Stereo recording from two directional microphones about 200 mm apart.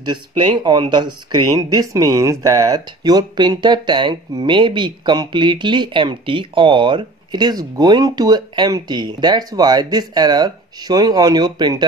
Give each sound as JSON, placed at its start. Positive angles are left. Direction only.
{"t": 0.0, "sound": "speech", "side_deg": -25}